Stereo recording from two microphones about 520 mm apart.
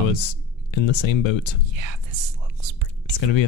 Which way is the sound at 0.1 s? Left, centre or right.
Left.